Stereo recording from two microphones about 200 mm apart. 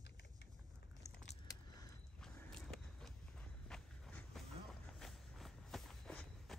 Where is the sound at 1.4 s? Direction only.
20° left (ahead or behind).